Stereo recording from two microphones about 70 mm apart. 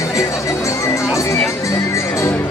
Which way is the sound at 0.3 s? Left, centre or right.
Left.